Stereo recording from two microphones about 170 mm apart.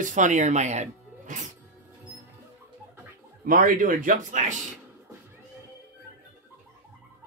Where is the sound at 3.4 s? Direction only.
55° right (ahead or behind).